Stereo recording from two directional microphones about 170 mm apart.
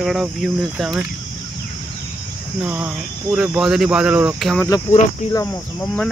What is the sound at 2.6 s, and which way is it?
Speech, 10° right (ahead or behind).